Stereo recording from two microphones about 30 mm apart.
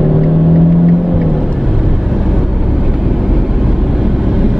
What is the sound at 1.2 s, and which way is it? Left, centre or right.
Vehicle, centre.